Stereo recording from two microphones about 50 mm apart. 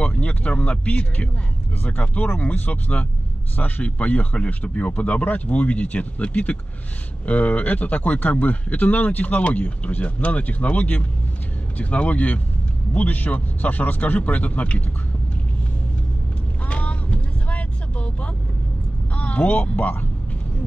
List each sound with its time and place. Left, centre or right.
0.0 s a sound: left
0.6 s a man's voice: left
16.6 s vehicle: left
19.1 s speech: left